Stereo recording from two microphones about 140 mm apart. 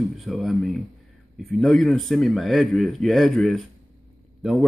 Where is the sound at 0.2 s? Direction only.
Centre (ahead or behind).